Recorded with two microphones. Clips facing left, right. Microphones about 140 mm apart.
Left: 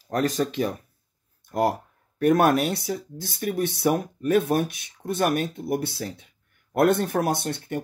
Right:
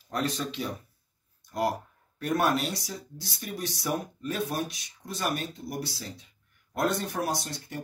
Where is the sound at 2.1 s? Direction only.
60° left (ahead or behind).